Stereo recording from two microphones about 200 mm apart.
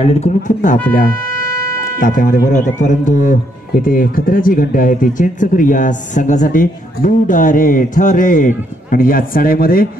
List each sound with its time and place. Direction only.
0.0 s speech: 30° left (ahead or behind)
2.0 s speech: 40° left (ahead or behind)